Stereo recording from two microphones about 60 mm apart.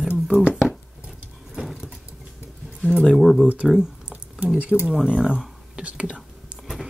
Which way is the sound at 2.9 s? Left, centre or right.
Centre.